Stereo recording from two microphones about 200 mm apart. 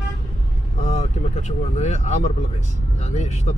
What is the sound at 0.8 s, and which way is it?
Speech, 35° left (ahead or behind).